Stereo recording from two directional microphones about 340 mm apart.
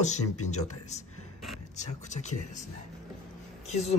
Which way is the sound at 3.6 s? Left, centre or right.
Centre.